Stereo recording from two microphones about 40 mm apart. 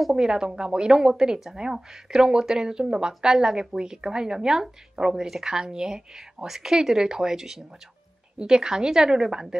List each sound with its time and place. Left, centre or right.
0.1 s speech: centre